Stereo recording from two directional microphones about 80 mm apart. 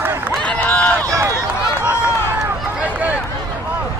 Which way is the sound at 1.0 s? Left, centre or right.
Right.